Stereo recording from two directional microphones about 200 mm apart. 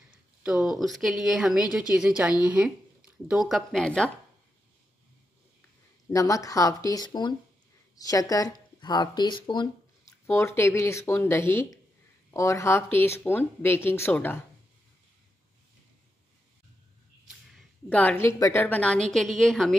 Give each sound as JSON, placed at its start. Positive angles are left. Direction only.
{"t": 0.4, "sound": "a woman's voice", "side_deg": -5}
{"t": 6.0, "sound": "speech", "side_deg": 15}
{"t": 17.5, "sound": "a woman's voice", "side_deg": 5}